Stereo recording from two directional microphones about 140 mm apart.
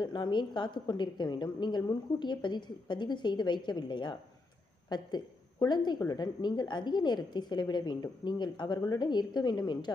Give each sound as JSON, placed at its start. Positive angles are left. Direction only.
{"t": 0.0, "sound": "a woman's voice", "side_deg": 35}